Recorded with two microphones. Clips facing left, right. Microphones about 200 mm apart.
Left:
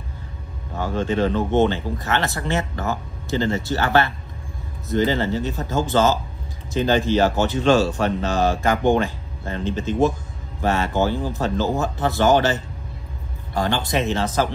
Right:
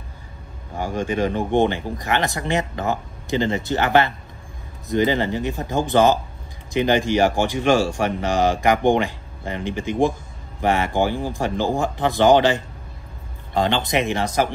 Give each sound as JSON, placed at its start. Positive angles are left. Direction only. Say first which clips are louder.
{"t": 0.7, "sound": "speech", "louder": "left 1 dB", "side_deg": -10}